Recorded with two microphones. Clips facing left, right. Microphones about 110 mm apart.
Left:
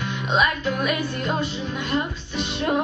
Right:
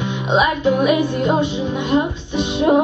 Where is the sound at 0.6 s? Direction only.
20° right (ahead or behind).